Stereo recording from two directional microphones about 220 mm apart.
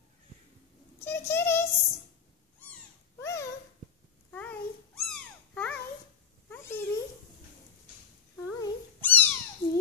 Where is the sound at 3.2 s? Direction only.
15° left (ahead or behind).